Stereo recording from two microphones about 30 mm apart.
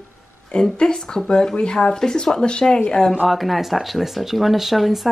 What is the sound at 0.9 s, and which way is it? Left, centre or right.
Speech, centre.